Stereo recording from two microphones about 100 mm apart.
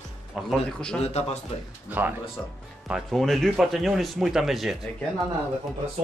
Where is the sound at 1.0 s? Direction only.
90° left.